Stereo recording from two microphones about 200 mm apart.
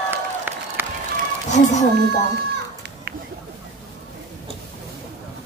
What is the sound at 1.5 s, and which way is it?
Speech, 35° left (ahead or behind).